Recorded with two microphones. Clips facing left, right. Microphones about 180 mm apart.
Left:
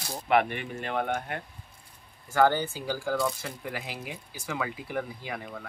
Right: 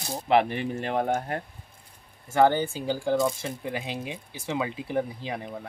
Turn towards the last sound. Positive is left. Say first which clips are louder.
# right 3 dB
turn(degrees=-25)  # may be behind; listen again after turning